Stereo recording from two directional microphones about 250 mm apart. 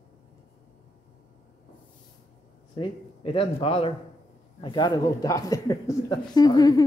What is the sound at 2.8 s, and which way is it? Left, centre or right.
Speech, left.